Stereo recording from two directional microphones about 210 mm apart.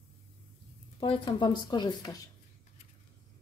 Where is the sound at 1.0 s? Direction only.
25° left (ahead or behind).